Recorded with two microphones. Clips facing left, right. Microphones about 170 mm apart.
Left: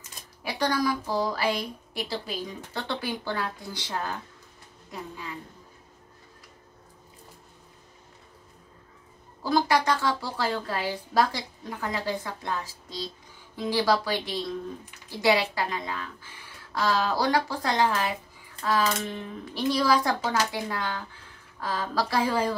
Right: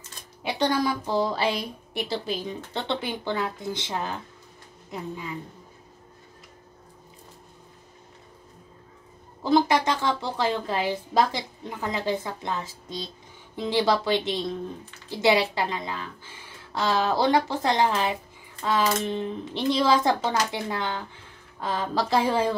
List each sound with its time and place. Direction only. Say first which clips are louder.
0.4 s a woman's voice: right 2 dB; 25° right (ahead or behind)
9.4 s a woman's voice: right 3 dB; 20° right (ahead or behind)